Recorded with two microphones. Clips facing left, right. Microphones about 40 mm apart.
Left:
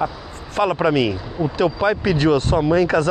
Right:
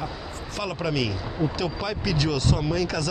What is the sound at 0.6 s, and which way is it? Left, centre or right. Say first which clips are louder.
Speech: left 10 dB; left.